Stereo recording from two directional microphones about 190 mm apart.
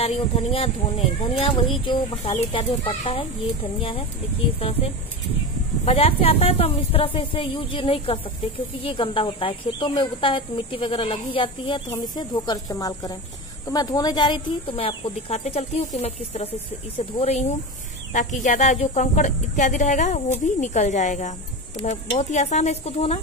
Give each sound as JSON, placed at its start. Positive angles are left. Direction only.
{"t": 0.0, "sound": "speech", "side_deg": 30}
{"t": 4.6, "sound": "speech", "side_deg": 30}